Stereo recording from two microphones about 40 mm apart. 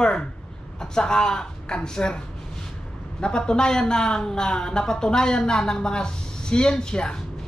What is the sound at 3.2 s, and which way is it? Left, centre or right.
Speech, centre.